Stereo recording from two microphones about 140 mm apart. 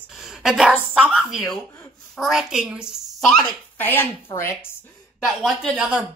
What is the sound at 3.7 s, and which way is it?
Speech, 15° left (ahead or behind).